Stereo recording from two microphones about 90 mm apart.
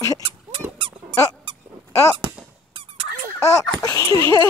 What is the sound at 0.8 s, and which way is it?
Squeak, 70° right (ahead or behind).